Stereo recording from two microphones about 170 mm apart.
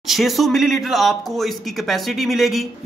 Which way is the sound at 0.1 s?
Centre (ahead or behind).